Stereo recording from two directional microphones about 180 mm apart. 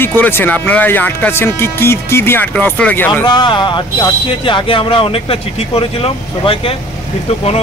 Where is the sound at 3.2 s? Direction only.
25° left (ahead or behind).